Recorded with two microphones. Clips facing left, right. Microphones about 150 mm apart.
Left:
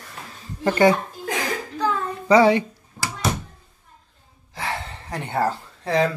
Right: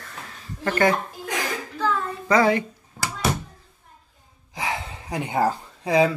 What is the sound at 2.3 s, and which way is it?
Speech, 25° left (ahead or behind).